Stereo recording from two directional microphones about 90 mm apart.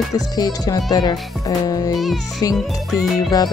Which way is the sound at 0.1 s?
40° left (ahead or behind).